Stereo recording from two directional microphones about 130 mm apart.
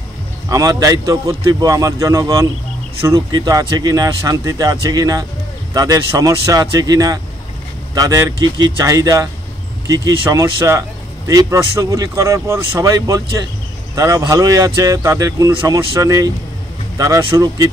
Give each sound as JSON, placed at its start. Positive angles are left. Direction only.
{"t": 0.5, "sound": "speech", "side_deg": -30}